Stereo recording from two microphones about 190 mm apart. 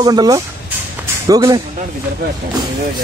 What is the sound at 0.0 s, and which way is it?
Speech, 20° right (ahead or behind).